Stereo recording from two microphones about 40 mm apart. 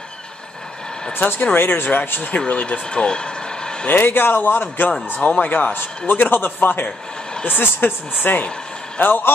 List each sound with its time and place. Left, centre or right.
1.1 s a man's voice: left
2.3 s speech: left
3.9 s a man's voice: left